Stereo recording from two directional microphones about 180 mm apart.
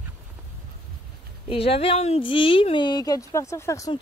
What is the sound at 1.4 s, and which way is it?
Speech, 30° left (ahead or behind).